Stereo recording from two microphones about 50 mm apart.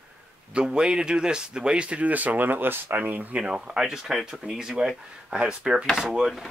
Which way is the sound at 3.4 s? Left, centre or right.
Centre.